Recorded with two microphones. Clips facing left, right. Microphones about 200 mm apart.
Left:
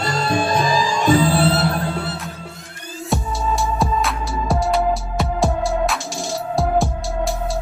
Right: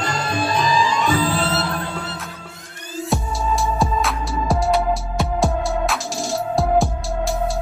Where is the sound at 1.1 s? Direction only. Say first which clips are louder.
Left 5 dB; 30° left (ahead or behind).